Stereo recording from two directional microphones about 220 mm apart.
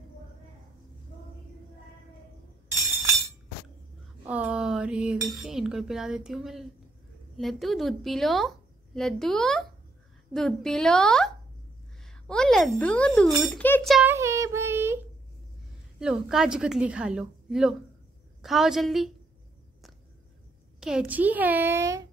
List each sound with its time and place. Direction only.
4.3 s a woman's voice: 5° right (ahead or behind)
14.1 s child singing: 15° right (ahead or behind)
16.0 s a woman's voice: 5° right (ahead or behind)
20.8 s a child's voice: 5° right (ahead or behind)